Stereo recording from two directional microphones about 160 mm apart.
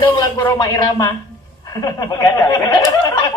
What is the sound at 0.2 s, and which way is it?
Speech, 20° left (ahead or behind).